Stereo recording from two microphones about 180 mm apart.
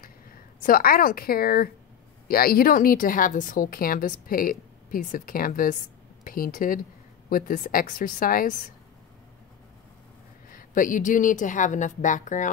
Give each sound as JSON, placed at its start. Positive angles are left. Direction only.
{"t": 0.6, "sound": "a woman's voice", "side_deg": 55}
{"t": 10.5, "sound": "a woman's voice", "side_deg": 50}